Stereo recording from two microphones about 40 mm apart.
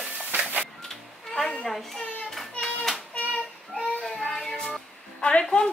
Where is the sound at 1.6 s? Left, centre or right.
Centre.